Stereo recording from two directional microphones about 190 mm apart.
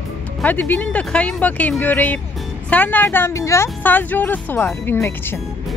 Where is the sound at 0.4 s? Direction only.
10° left (ahead or behind).